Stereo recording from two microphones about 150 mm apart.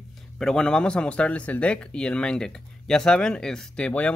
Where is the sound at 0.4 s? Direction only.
5° left (ahead or behind).